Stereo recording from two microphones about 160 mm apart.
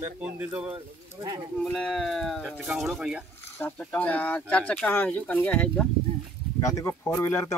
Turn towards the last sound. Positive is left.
turn(degrees=15)  # may be behind; listen again after turning